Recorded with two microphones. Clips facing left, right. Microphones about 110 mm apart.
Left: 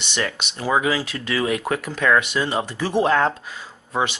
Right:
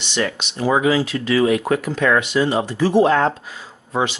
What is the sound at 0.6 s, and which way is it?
Speech, 30° right (ahead or behind).